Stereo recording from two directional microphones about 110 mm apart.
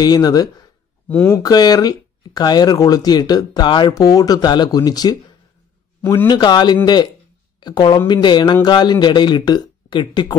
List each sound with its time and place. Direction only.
0.0 s speech: 35° left (ahead or behind)
1.0 s speech: 15° left (ahead or behind)
1.3 s speech: 35° left (ahead or behind)
6.2 s speech: 40° left (ahead or behind)